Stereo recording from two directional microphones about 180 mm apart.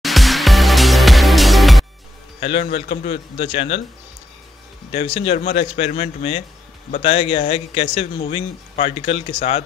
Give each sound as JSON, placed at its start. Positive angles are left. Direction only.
{"t": 0.0, "sound": "music", "side_deg": 0}
{"t": 2.6, "sound": "speech", "side_deg": 35}
{"t": 4.9, "sound": "speech", "side_deg": 30}